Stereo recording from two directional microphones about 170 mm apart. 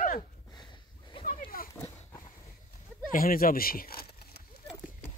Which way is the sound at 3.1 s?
55° left (ahead or behind).